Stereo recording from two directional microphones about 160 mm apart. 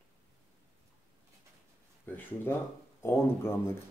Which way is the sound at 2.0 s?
10° left (ahead or behind).